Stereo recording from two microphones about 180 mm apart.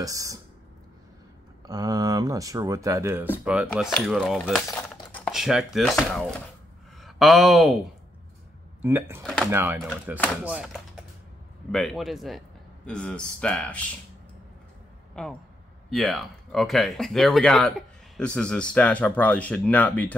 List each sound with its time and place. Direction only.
0.0 s speech: 20° right (ahead or behind)
1.7 s speech: 20° right (ahead or behind); by 4.6 s centre (ahead or behind)
4.6 s crumpling: 5° left (ahead or behind)
5.1 s speech: centre (ahead or behind)
8.8 s speech: 15° right (ahead or behind)
10.1 s speech: 10° left (ahead or behind)
10.4 s speech: 5° right (ahead or behind)
15.2 s speech: 5° left (ahead or behind)